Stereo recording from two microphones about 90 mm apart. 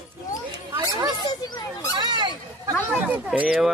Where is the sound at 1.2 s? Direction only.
55° left (ahead or behind).